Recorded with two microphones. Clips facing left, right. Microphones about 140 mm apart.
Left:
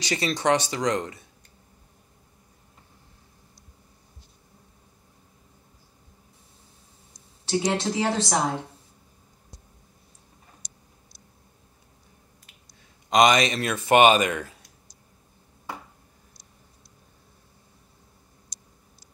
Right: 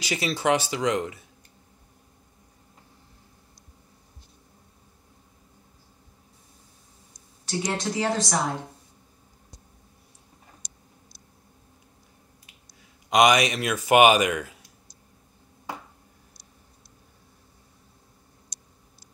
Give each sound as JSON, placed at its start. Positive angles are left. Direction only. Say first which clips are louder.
{"t": 0.0, "sound": "speech", "louder": "left 1 dB", "side_deg": -5}
{"t": 7.4, "sound": "speech", "louder": "left 4 dB", "side_deg": 30}
{"t": 10.6, "sound": "tick-tock", "louder": "even", "side_deg": -60}
{"t": 13.1, "sound": "speech", "louder": "even", "side_deg": -10}